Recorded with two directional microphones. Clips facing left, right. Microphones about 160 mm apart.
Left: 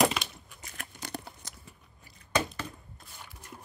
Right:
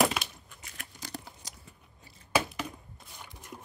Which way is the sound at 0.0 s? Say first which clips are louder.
Left 1 dB; 5° right (ahead or behind).